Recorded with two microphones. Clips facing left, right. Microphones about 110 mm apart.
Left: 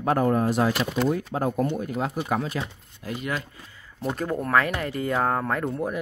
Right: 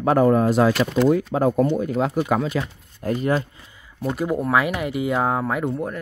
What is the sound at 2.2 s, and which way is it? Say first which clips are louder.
Speech: right 7 dB; 90° right.